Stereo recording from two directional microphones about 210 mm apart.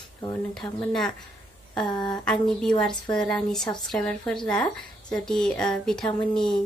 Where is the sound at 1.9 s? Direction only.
20° left (ahead or behind).